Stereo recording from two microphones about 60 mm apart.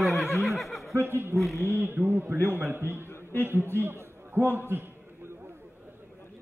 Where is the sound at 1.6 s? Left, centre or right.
Right.